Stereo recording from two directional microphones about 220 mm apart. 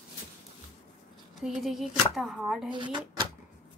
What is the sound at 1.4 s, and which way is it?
Speech, centre (ahead or behind).